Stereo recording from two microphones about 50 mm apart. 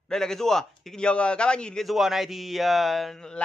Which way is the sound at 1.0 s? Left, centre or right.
Centre.